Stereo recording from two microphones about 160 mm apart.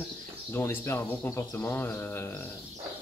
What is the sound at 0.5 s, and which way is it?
Speech, 15° left (ahead or behind).